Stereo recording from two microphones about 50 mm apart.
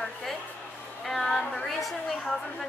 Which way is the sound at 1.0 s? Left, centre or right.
Centre.